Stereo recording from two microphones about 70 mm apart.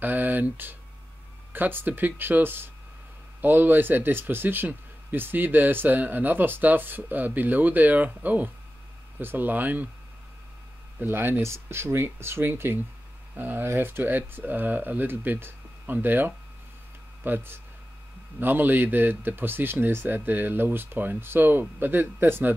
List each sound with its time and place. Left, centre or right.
0.0 s a sound: right
1.5 s speech: right
11.0 s speech: right